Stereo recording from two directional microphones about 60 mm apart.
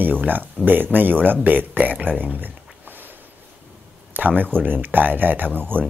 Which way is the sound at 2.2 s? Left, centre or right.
Right.